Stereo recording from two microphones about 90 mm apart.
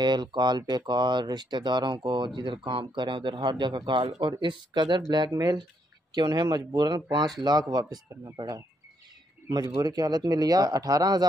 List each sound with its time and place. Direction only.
0.0 s speech: 55° right (ahead or behind)
9.8 s speech: 45° right (ahead or behind)